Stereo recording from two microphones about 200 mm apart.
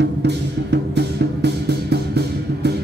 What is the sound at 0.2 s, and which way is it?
Music, 60° right (ahead or behind).